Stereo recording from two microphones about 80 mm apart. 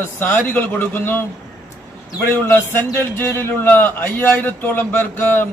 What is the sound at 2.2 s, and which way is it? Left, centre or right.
A man's voice, left.